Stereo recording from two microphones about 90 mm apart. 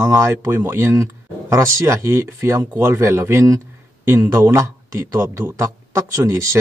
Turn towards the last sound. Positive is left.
turn(degrees=-35)  # may be behind; listen again after turning